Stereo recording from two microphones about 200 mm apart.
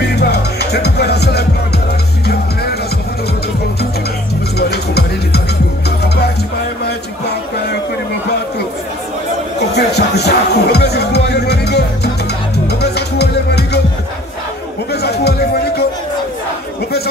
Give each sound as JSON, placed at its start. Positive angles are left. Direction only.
{"t": 0.1, "sound": "music", "side_deg": 55}
{"t": 4.6, "sound": "music", "side_deg": 55}
{"t": 9.6, "sound": "music", "side_deg": 55}
{"t": 14.9, "sound": "chatter", "side_deg": 55}